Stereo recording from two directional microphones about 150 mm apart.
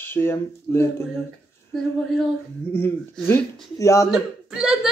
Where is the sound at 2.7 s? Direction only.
15° left (ahead or behind).